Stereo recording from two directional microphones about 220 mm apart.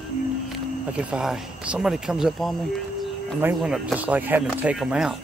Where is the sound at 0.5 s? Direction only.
5° right (ahead or behind).